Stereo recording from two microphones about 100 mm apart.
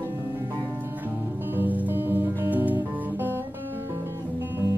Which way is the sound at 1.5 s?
20° right (ahead or behind).